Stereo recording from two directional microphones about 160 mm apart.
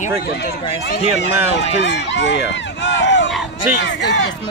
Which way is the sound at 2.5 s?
90° left.